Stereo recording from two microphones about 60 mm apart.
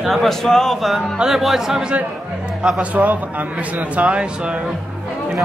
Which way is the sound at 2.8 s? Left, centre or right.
Right.